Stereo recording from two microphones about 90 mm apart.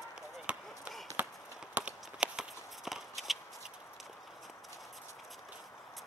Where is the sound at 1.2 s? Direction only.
20° right (ahead or behind).